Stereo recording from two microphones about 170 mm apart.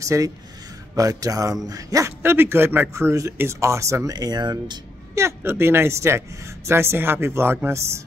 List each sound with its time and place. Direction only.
0.0 s a man's voice: 20° right (ahead or behind)